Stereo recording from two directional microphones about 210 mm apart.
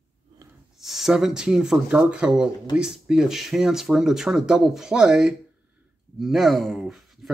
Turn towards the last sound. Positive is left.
turn(degrees=0)  # may be behind; listen again after turning